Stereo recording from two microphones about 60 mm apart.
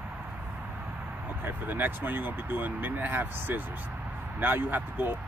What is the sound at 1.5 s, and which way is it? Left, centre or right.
Speech, right.